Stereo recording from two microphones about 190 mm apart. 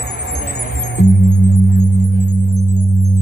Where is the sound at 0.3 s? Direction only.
65° left (ahead or behind).